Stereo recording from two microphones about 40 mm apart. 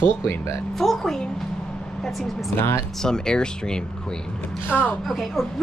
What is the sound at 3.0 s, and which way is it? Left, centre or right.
Speech, centre.